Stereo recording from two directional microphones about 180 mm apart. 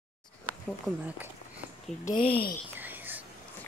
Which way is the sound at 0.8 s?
10° right (ahead or behind).